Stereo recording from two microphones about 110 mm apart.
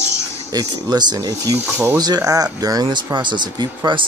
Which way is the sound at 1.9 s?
35° right (ahead or behind).